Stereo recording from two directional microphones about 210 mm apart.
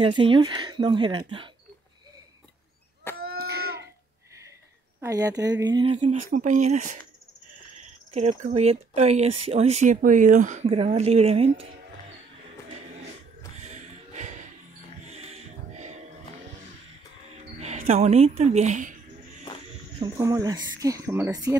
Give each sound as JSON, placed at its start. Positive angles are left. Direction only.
{"t": 0.0, "sound": "speech", "side_deg": -25}
{"t": 3.2, "sound": "a sound", "side_deg": -45}
{"t": 5.0, "sound": "speech", "side_deg": -15}
{"t": 6.3, "sound": "speech", "side_deg": -35}
{"t": 13.6, "sound": "music", "side_deg": -35}
{"t": 17.6, "sound": "speech", "side_deg": -30}
{"t": 20.0, "sound": "speech", "side_deg": -15}